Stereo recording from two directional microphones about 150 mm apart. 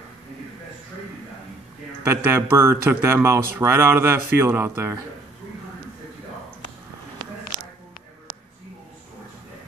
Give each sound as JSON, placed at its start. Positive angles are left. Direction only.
{"t": 2.0, "sound": "speech", "side_deg": -15}